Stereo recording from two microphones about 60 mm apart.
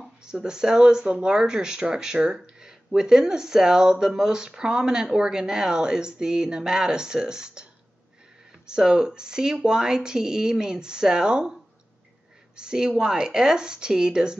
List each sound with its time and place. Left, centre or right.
0.2 s speech: centre
8.6 s speech: centre
12.5 s speech: centre